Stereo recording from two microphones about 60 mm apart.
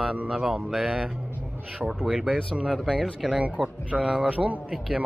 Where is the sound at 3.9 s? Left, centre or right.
Centre.